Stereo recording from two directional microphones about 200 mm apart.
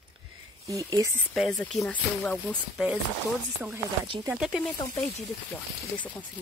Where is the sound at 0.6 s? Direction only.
15° right (ahead or behind).